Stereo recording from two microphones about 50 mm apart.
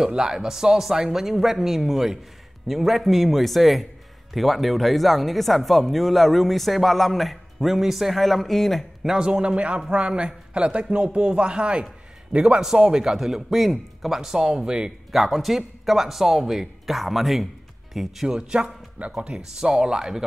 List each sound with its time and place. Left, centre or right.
0.1 s speech: centre
9.0 s a man's voice: centre
15.1 s speech: centre
18.3 s speech: centre